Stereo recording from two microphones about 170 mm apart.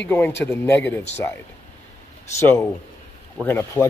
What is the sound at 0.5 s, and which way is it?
Speech, 10° left (ahead or behind).